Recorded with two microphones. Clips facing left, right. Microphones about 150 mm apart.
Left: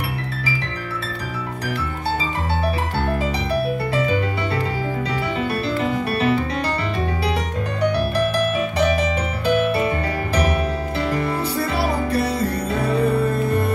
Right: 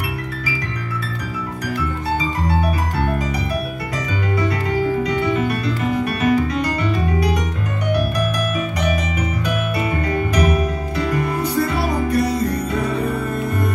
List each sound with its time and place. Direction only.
5.0 s music: 30° left (ahead or behind)